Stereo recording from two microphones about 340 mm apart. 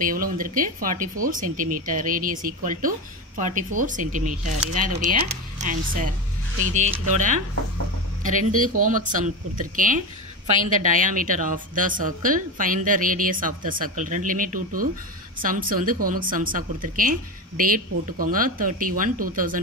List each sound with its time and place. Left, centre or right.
0.0 s a woman's voice: right